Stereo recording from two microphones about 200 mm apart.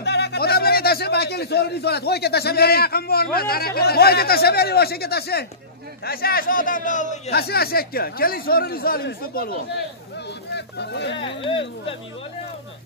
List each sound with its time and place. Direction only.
0.0 s a man's voice: 55° left (ahead or behind); by 7.3 s 40° left (ahead or behind)
7.3 s speech: 50° left (ahead or behind)
11.1 s speech: 25° left (ahead or behind)